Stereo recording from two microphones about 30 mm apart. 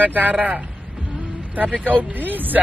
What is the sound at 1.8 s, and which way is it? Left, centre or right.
Speech, right.